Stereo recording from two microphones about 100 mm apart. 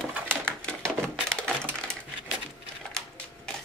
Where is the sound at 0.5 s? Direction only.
5° left (ahead or behind).